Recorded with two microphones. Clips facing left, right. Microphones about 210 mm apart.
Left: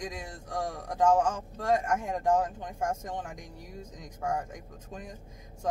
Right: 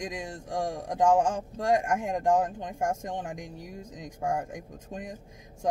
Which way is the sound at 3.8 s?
20° right (ahead or behind).